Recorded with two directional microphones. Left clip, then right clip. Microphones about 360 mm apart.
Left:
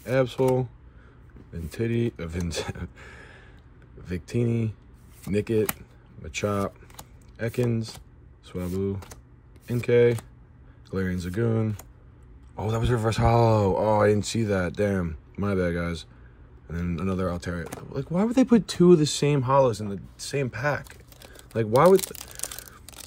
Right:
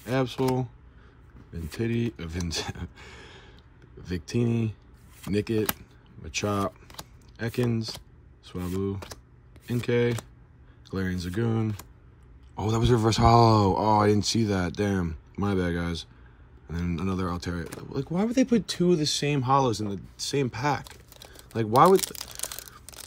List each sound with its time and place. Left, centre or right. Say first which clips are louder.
0.0 s speech: left 4 dB; centre
21.5 s crumpling: left 1 dB; centre